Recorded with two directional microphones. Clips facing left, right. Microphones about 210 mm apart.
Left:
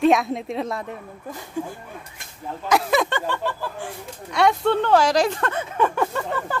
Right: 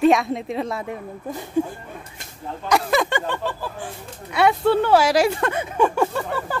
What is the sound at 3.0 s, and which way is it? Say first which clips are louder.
Speech: right 1 dB; 15° right (ahead or behind).